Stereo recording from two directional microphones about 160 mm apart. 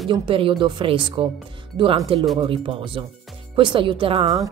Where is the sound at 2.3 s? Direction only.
35° right (ahead or behind).